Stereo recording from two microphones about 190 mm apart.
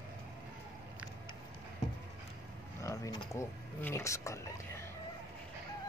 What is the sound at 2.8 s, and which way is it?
Speech, 15° left (ahead or behind).